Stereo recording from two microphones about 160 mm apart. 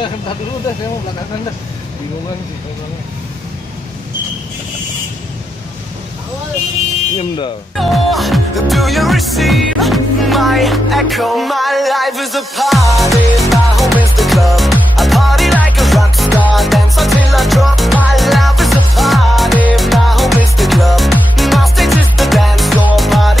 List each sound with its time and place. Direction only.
7.2 s speech: 30° left (ahead or behind)
7.7 s music: centre (ahead or behind)